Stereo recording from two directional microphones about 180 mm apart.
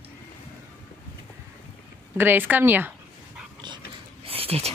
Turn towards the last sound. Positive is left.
turn(degrees=-35)  # may be behind; listen again after turning